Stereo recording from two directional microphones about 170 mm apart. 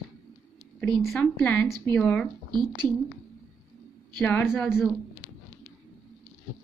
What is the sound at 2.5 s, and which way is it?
Speech, 25° right (ahead or behind).